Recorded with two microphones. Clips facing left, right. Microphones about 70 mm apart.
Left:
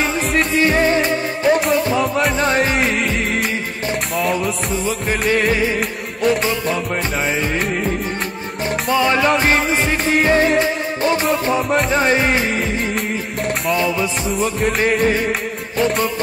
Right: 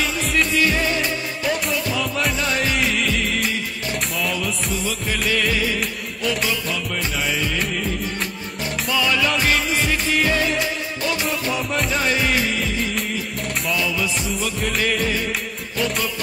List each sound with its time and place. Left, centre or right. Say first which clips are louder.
0.5 s music: left 5 dB; left
8.8 s music: left 5 dB; left